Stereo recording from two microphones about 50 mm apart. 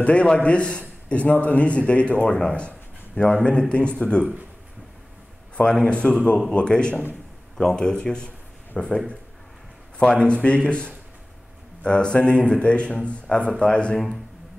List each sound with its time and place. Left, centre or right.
0.0 s a man's voice: left
5.6 s a man's voice: left
13.9 s a man's voice: centre